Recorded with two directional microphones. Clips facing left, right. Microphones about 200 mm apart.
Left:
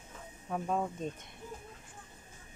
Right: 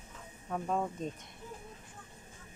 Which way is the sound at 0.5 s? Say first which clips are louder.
Even; centre (ahead or behind).